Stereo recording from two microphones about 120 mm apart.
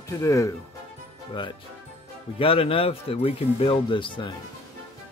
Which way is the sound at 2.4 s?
50° left (ahead or behind).